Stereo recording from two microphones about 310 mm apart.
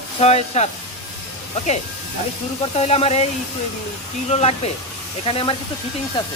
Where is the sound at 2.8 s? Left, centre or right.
Centre.